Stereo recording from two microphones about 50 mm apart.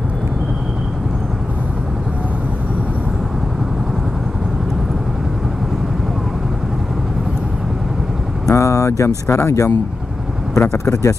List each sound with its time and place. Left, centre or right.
8.5 s a sound: left
9.4 s speech: left
10.5 s speech: left